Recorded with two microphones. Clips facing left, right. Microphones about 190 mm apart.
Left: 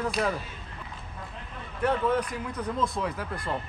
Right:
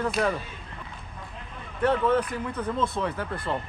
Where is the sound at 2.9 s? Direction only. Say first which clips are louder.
Right 2 dB; centre (ahead or behind).